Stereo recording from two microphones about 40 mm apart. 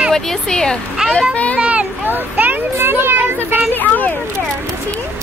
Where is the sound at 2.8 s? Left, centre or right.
Right.